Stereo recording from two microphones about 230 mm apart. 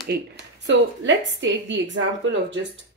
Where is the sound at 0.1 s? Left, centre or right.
Right.